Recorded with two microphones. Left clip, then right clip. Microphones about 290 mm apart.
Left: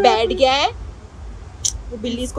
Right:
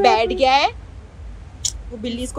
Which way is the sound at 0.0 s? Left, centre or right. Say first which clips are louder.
Left 1 dB; centre.